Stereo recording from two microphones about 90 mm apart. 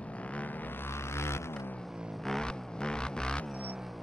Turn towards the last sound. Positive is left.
turn(degrees=10)  # may be behind; listen again after turning